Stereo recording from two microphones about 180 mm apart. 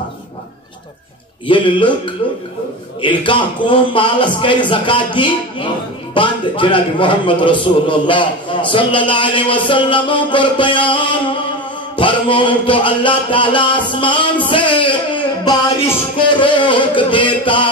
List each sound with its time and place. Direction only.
1.5 s a man's voice: 30° left (ahead or behind)
3.0 s a man's voice: 25° left (ahead or behind)